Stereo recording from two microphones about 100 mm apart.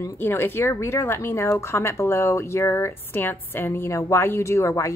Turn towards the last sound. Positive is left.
turn(degrees=30)  # may be behind; listen again after turning